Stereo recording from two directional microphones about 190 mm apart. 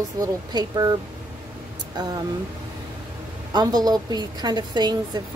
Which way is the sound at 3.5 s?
20° right (ahead or behind).